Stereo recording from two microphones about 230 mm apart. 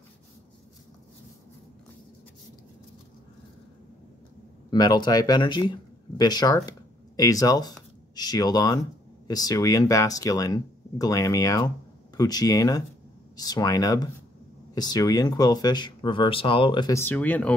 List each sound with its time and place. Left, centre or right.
4.6 s speech: centre